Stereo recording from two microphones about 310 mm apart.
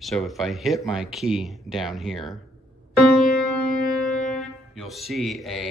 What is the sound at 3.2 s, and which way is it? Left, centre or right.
Music, centre.